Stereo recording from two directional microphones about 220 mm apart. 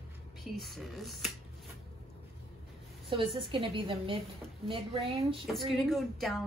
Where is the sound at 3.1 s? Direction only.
25° right (ahead or behind).